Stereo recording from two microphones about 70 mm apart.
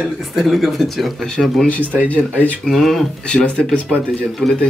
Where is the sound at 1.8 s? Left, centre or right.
Right.